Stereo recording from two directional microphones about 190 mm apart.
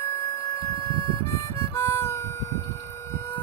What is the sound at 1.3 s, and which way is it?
Harmonica, 15° left (ahead or behind).